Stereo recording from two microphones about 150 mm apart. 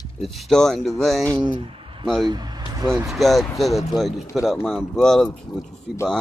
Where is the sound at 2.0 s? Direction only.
Centre (ahead or behind).